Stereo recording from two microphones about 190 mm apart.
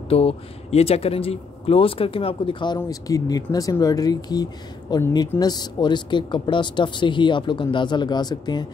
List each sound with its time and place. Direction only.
0.1 s speech: 30° left (ahead or behind)